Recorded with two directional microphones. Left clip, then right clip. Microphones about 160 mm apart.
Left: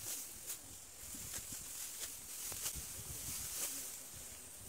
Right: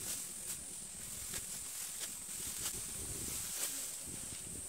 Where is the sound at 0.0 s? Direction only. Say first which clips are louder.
Right 3 dB; 20° left (ahead or behind).